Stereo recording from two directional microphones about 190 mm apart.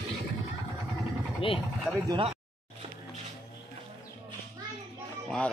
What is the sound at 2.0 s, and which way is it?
Speech, 30° right (ahead or behind).